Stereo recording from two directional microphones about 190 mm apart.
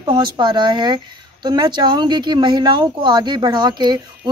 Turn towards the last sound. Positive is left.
turn(degrees=-20)  # may be behind; listen again after turning